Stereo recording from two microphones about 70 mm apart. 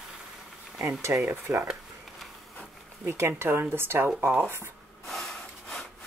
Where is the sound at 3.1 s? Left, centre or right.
Right.